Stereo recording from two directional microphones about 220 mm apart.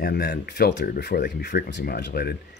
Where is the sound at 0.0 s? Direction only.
50° left (ahead or behind).